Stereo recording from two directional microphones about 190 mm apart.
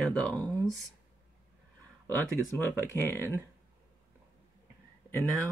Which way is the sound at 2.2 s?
10° left (ahead or behind).